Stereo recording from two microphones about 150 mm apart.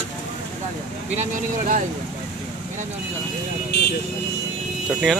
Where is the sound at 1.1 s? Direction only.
60° right (ahead or behind).